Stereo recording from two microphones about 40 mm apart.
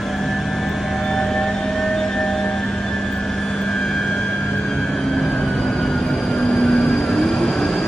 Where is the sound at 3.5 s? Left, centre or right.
Centre.